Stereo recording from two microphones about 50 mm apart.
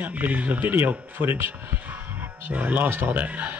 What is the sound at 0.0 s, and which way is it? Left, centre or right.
Speech, right.